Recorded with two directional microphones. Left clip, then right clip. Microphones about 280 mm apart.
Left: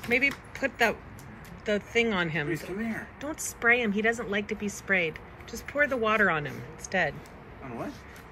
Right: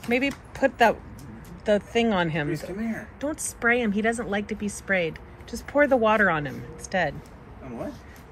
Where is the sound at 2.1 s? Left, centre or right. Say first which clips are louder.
Right 3 dB; centre.